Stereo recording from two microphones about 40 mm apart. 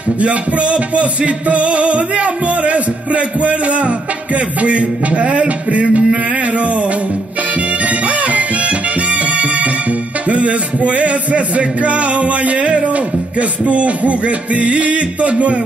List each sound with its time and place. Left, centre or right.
0.2 s music: right
7.8 s music: right